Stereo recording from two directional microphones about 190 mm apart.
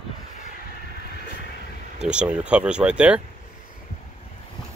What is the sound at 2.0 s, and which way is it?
Speech, 5° right (ahead or behind).